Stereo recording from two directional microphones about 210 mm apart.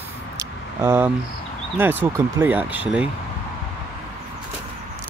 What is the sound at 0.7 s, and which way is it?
Speech, 10° right (ahead or behind).